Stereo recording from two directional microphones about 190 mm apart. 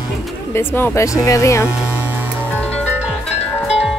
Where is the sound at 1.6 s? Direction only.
5° right (ahead or behind).